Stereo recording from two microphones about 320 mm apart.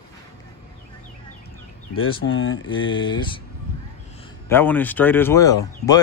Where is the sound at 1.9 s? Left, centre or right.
Left.